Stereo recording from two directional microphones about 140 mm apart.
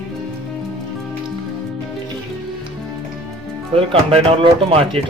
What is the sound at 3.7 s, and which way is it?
Speech, 45° right (ahead or behind).